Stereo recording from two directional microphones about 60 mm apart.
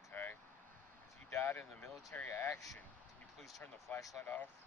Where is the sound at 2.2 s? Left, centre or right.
Left.